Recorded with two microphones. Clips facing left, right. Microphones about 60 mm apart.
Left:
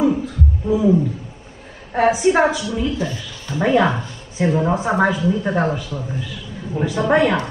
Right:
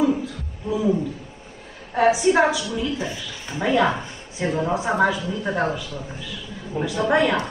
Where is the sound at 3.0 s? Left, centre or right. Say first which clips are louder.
Left 4 dB; right.